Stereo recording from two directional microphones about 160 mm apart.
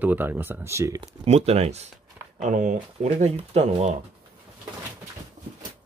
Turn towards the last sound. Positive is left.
turn(degrees=-45)  # may be behind; listen again after turning